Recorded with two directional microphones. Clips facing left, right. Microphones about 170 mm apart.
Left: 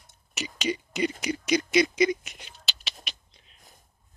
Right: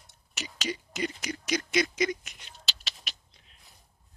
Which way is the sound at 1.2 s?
Centre (ahead or behind).